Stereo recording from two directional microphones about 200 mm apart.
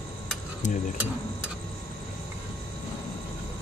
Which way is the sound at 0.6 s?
40° left (ahead or behind).